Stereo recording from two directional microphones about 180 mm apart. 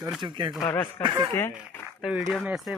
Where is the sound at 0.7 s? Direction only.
10° left (ahead or behind).